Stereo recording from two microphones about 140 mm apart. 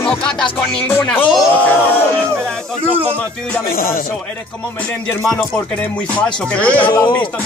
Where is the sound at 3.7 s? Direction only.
90° left.